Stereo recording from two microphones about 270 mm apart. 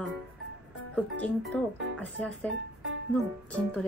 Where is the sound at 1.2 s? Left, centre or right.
Centre.